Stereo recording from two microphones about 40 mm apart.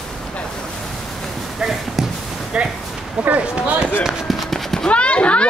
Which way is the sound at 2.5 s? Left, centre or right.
Right.